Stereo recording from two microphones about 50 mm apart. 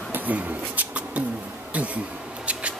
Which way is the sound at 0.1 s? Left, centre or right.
Right.